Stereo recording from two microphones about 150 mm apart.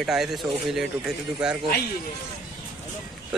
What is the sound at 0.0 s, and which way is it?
Speech, centre (ahead or behind).